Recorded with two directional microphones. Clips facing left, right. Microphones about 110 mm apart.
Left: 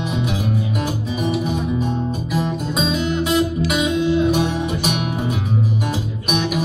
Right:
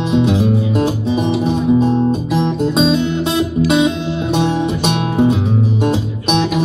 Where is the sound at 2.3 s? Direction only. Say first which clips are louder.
Right 6 dB; 30° right (ahead or behind).